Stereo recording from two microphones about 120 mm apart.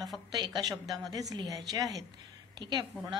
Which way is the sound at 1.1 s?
30° right (ahead or behind).